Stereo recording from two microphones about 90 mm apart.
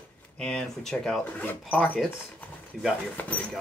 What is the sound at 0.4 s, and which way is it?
Speech, 10° left (ahead or behind).